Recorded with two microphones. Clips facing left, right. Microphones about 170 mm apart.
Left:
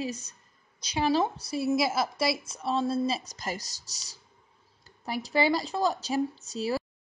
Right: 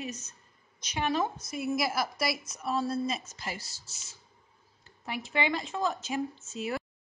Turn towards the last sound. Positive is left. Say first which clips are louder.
# left 4 dB
turn(degrees=35)  # may be behind; listen again after turning